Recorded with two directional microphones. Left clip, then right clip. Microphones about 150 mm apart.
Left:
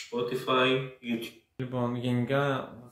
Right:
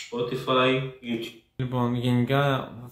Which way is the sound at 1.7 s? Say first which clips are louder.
Right 4 dB; 25° right (ahead or behind).